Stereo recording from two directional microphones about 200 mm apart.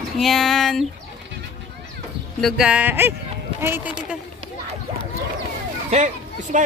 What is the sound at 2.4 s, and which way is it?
Speech, centre (ahead or behind).